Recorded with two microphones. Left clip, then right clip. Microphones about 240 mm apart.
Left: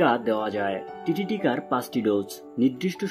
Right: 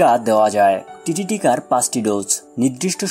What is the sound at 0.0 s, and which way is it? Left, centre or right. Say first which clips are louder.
Speech: right 9 dB; right.